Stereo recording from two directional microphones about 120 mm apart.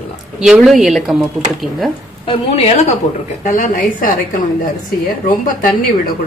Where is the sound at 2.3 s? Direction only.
60° left (ahead or behind).